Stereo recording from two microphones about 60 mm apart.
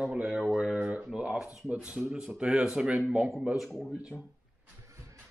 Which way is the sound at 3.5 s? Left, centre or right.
Centre.